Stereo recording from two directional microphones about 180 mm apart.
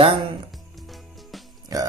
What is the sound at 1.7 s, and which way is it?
Speech, 20° right (ahead or behind).